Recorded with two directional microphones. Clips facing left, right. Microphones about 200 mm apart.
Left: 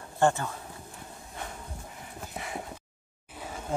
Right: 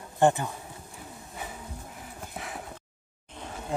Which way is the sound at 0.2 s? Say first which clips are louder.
Right 2 dB; 15° right (ahead or behind).